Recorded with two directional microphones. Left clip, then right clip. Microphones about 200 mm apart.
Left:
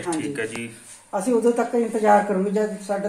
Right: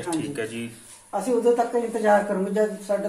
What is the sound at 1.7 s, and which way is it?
Speech, 55° left (ahead or behind).